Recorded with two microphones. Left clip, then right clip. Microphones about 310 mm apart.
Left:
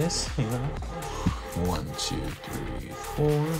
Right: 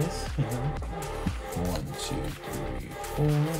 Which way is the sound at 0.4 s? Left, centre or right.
Centre.